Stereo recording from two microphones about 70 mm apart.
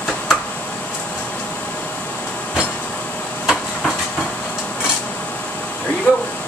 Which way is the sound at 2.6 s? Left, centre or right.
Centre.